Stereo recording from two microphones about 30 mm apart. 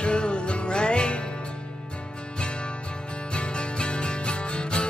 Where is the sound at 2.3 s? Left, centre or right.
Left.